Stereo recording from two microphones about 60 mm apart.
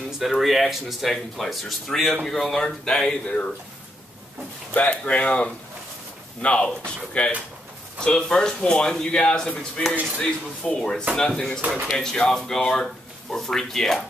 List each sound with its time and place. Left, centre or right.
0.2 s speech: centre
4.7 s speech: left; by 14.0 s centre